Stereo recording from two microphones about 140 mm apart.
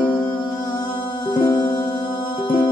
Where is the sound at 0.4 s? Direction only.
25° left (ahead or behind).